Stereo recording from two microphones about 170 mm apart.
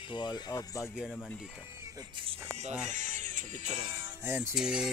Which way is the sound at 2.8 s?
45° right (ahead or behind).